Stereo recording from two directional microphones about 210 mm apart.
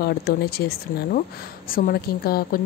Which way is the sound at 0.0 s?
50° left (ahead or behind).